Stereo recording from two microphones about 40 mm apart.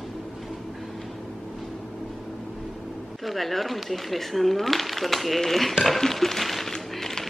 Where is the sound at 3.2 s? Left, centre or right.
Centre.